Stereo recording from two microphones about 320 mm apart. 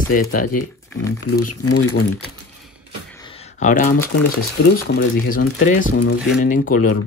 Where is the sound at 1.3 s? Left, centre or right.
Left.